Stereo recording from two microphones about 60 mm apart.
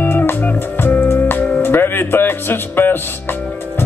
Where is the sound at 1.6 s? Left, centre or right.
Left.